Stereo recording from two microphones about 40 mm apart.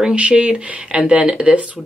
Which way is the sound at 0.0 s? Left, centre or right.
Right.